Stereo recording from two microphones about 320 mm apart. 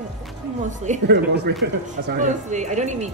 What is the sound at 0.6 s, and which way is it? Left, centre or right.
Speech, right.